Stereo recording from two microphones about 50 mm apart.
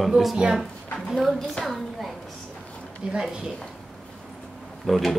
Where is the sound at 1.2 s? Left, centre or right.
Centre.